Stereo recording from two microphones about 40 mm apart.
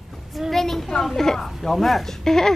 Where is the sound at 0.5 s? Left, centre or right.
Centre.